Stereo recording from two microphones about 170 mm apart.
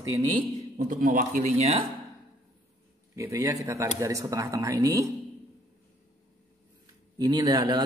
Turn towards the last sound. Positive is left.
turn(degrees=-25)  # may be behind; listen again after turning